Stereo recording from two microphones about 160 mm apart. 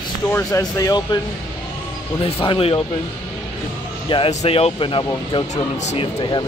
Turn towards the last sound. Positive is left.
turn(degrees=30)  # may be behind; listen again after turning